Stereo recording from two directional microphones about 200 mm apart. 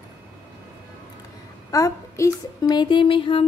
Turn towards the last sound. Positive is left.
turn(degrees=25)  # may be behind; listen again after turning